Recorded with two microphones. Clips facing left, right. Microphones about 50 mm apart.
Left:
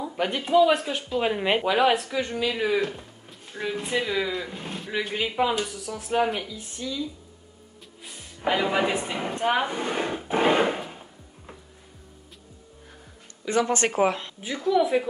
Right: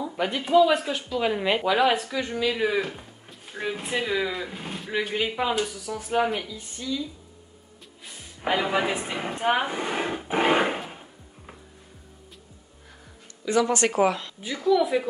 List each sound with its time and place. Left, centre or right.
0.2 s speech: centre
8.0 s a woman's voice: centre
13.5 s speech: left
14.7 s speech: centre